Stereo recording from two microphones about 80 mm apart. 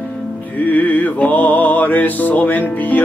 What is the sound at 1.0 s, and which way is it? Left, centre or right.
Music, left.